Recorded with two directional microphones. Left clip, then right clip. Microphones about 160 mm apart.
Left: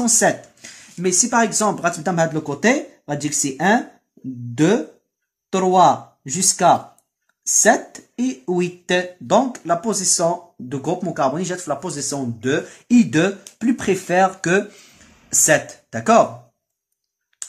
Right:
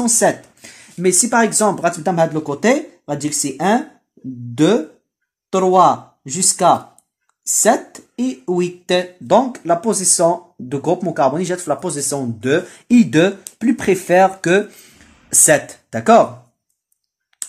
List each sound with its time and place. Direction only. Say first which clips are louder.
0.0 s a sound: right 2 dB; centre (ahead or behind)
1.0 s speech: right 3 dB; 30° right (ahead or behind)
2.1 s speech: right 3 dB; centre (ahead or behind)
9.3 s speech: right 3 dB; 15° right (ahead or behind)
15.2 s speech: right 2 dB; 30° right (ahead or behind)